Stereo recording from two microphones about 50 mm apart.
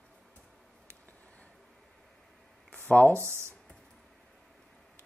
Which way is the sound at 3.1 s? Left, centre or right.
Right.